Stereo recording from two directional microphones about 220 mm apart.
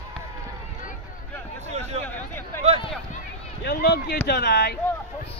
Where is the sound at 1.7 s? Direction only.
30° right (ahead or behind).